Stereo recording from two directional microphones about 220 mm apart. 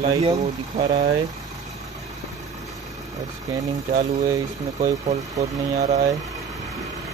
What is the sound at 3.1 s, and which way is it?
Speech, 15° right (ahead or behind).